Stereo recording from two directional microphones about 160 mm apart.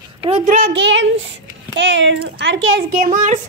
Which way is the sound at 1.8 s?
90° right.